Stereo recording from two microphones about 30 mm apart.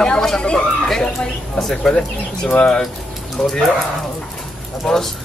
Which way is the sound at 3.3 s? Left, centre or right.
Centre.